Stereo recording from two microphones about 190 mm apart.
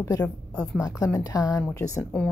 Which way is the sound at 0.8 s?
15° left (ahead or behind).